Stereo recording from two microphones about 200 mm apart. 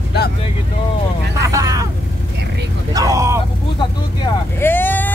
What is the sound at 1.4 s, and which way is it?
Vehicle, 15° right (ahead or behind).